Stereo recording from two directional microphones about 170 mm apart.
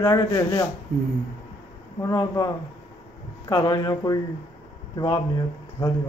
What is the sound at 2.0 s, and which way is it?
A man's voice, 20° left (ahead or behind).